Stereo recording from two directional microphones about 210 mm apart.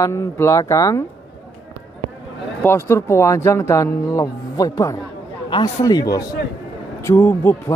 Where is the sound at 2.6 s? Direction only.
10° left (ahead or behind).